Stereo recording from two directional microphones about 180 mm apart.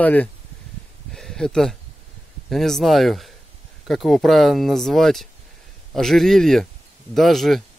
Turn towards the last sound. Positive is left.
turn(degrees=0)  # may be behind; listen again after turning